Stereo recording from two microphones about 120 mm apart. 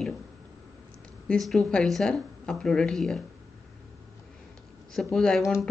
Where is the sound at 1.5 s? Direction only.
5° left (ahead or behind).